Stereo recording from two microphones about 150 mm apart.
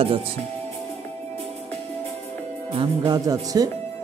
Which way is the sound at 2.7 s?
30° right (ahead or behind).